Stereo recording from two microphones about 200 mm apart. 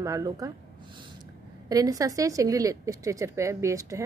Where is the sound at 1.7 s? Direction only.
15° right (ahead or behind).